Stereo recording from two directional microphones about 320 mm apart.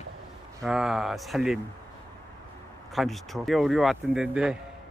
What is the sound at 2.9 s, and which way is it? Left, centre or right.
Speech, centre.